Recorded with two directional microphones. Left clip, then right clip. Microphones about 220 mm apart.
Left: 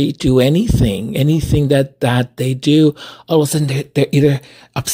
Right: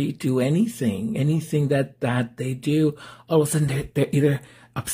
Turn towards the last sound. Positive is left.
turn(degrees=30)  # may be behind; listen again after turning